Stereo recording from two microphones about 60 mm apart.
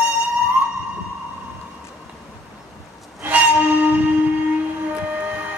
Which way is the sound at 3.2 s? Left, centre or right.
Right.